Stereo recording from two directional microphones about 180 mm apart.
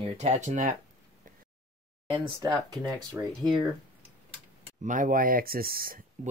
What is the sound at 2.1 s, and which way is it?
Speech, 20° right (ahead or behind).